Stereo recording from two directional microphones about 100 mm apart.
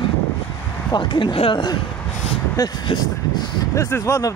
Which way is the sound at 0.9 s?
50° left (ahead or behind).